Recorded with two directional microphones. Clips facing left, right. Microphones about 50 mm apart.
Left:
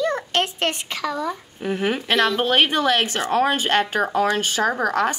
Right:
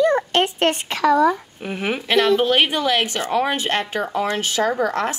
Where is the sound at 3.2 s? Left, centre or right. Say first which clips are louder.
Left 1 dB; left.